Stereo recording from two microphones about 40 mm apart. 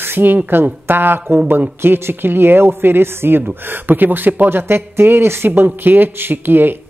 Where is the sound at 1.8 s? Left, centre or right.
Right.